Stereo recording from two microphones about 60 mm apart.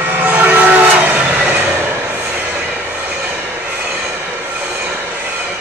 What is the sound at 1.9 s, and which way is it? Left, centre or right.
Train, right.